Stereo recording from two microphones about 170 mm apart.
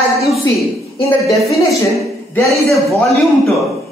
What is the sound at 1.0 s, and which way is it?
Speech, 20° left (ahead or behind).